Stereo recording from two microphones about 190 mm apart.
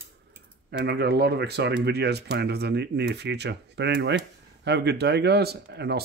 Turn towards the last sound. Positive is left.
turn(degrees=-60)  # may be behind; listen again after turning